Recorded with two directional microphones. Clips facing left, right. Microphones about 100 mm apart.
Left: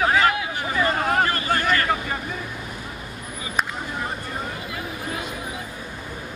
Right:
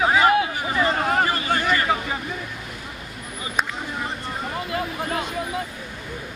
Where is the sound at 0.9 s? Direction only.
Centre (ahead or behind).